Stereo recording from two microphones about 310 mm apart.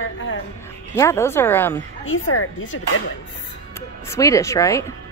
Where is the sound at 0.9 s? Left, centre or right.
Centre.